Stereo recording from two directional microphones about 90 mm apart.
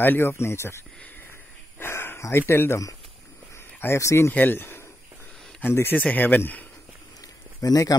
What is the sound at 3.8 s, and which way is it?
Speech, 30° left (ahead or behind).